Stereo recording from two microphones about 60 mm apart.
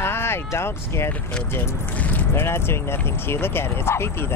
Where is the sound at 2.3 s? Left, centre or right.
Left.